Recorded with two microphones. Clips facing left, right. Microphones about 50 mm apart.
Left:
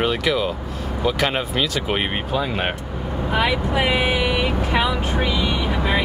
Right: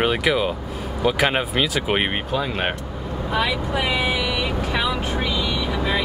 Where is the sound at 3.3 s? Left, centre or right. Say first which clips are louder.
Left 2 dB; left.